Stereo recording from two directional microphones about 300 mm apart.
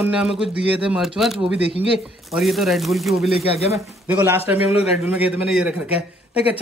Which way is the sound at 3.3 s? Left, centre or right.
Centre.